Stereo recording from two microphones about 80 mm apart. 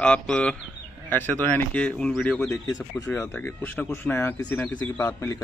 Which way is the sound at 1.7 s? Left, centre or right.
Centre.